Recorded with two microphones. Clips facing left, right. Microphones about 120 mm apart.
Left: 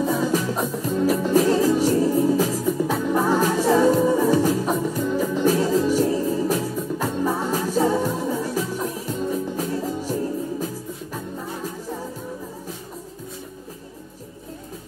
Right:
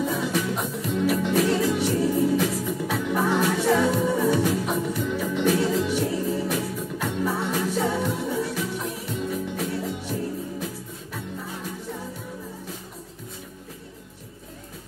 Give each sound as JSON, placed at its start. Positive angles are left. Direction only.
{"t": 0.0, "sound": "music", "side_deg": 35}